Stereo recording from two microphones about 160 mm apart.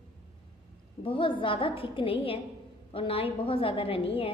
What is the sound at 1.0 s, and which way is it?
A woman's voice, 30° left (ahead or behind).